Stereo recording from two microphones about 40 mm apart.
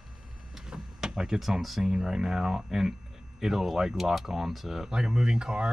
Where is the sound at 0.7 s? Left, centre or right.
Centre.